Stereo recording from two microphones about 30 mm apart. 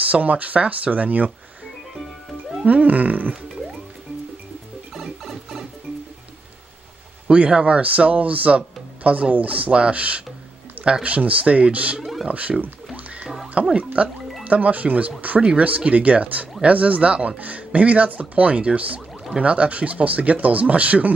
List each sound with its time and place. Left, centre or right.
0.0 s speech: right
2.6 s music: right
5.2 s music: centre
7.2 s speech: right
7.8 s speech: right
11.1 s speech: right
12.0 s speech: centre
12.3 s speech: right
19.4 s speech: right